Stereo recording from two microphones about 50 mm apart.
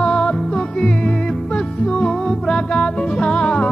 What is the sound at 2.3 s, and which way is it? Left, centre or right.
Music, centre.